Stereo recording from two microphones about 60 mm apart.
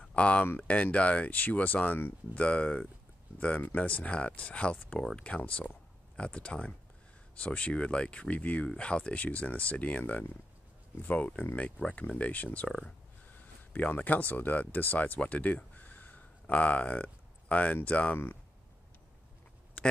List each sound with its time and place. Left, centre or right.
0.0 s a sound: centre
0.6 s speech: left
13.7 s speech: left
19.8 s quack: left